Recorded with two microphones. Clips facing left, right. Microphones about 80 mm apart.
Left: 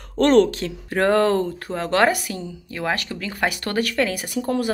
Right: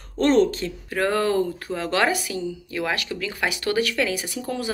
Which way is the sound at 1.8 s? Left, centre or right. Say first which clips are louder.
Left 4 dB; left.